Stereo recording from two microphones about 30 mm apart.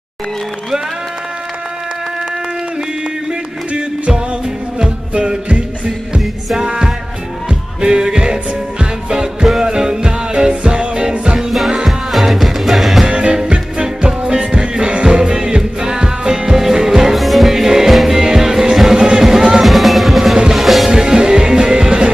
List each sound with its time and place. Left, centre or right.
6.1 s music: right
11.3 s music: centre
13.0 s music: right
14.2 s music: right
17.1 s music: centre
19.6 s music: centre
20.9 s music: right